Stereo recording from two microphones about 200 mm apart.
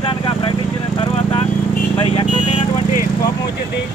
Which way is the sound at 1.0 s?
25° left (ahead or behind).